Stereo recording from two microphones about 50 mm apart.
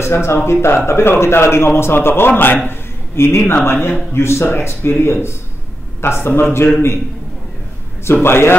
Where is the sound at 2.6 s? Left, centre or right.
Left.